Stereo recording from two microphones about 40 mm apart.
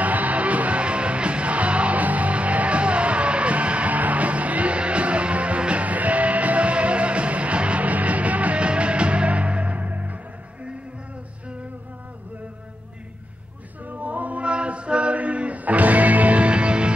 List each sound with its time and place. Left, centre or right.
0.0 s music: right
13.8 s chant: right